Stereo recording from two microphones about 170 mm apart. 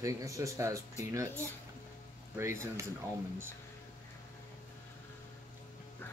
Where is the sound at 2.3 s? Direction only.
15° right (ahead or behind).